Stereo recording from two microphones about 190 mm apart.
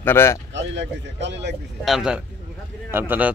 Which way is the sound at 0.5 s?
65° right (ahead or behind).